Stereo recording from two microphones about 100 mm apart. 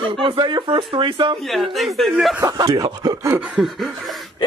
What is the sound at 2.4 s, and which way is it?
Speech, 35° right (ahead or behind).